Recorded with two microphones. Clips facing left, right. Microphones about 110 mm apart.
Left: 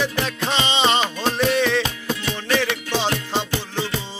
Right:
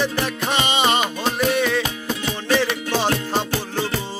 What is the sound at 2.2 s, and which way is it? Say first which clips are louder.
Music: right 2 dB; 20° right (ahead or behind).